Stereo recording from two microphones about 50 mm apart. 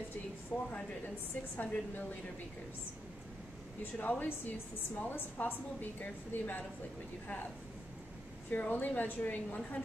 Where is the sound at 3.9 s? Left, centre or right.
Left.